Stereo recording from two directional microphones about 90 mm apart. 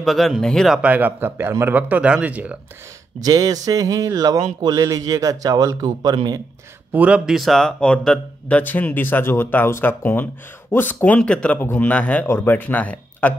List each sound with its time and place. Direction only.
0.0 s speech: centre (ahead or behind)
0.8 s speech: 20° right (ahead or behind)
1.8 s speech: 15° right (ahead or behind)
3.2 s a man's voice: 40° right (ahead or behind)
6.9 s speech: 15° right (ahead or behind); by 13.3 s 15° left (ahead or behind)